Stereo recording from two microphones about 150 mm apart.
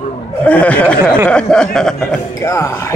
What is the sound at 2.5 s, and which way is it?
Speech, 20° left (ahead or behind).